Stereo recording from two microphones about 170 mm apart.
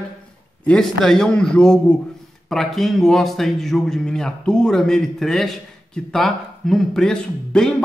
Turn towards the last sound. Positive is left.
turn(degrees=5)  # may be behind; listen again after turning